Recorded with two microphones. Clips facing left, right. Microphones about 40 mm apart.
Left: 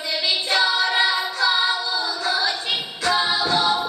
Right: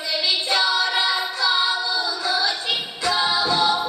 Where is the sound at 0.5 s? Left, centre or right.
Centre.